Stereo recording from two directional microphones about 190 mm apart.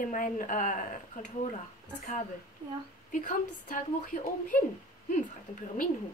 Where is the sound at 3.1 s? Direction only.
45° left (ahead or behind).